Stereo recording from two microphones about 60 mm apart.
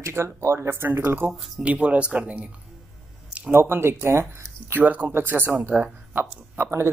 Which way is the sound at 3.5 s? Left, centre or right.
Right.